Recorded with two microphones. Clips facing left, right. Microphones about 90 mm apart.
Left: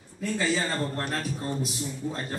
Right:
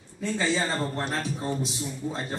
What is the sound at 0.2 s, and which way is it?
A man's voice, 25° right (ahead or behind).